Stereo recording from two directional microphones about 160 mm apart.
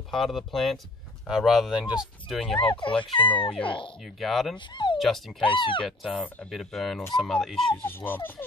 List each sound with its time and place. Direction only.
0.1 s speech: centre (ahead or behind)
2.7 s speech: 30° left (ahead or behind)
4.0 s speech: centre (ahead or behind)
4.6 s speech: 30° left (ahead or behind)
4.9 s speech: centre (ahead or behind)
5.4 s speech: 30° left (ahead or behind)
5.9 s speech: centre (ahead or behind)